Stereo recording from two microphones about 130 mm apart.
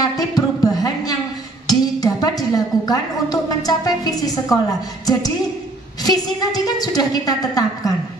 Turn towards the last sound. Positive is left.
turn(degrees=30)  # may be behind; listen again after turning